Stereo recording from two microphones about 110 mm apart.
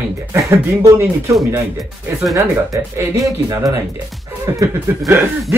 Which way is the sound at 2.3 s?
30° right (ahead or behind).